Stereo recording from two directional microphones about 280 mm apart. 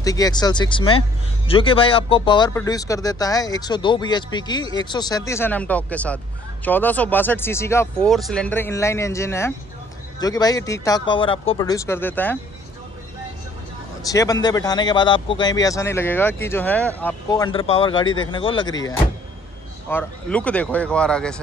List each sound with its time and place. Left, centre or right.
0.0 s a man's voice: centre
14.0 s a man's voice: centre